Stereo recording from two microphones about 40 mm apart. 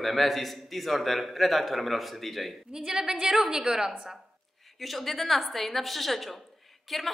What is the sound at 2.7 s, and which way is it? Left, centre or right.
A woman's voice, centre.